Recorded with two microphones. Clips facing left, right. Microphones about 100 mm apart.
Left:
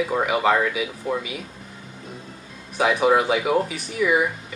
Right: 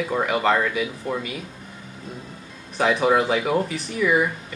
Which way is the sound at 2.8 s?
5° left (ahead or behind).